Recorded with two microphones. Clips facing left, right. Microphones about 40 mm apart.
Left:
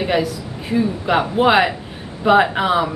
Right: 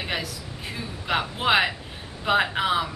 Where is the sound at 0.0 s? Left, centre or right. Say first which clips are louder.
Left 11 dB; centre.